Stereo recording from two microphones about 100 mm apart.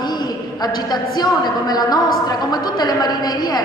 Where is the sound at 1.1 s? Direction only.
45° left (ahead or behind).